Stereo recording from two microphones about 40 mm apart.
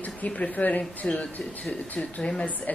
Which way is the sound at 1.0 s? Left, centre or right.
Left.